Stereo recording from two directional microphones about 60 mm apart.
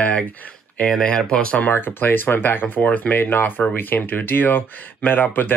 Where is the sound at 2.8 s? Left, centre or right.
Left.